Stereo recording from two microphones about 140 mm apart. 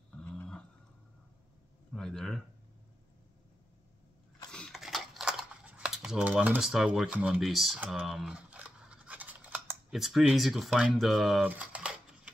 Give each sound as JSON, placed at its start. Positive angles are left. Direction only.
{"t": 0.2, "sound": "a sound", "side_deg": 10}
{"t": 2.0, "sound": "speech", "side_deg": 5}
{"t": 4.5, "sound": "a sound", "side_deg": 5}
{"t": 7.3, "sound": "speech", "side_deg": 0}
{"t": 7.9, "sound": "scissors", "side_deg": 0}
{"t": 11.4, "sound": "typing", "side_deg": -10}